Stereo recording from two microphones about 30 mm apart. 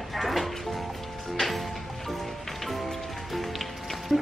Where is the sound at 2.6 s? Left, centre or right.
Centre.